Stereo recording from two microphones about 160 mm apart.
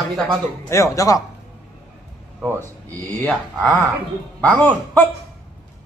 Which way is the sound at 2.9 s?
10° left (ahead or behind).